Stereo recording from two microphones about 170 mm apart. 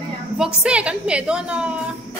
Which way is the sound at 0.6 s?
5° right (ahead or behind).